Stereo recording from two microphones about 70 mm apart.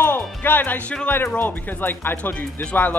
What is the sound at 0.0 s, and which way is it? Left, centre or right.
Music, left.